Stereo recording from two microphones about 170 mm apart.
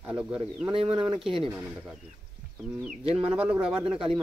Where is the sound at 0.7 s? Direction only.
30° right (ahead or behind).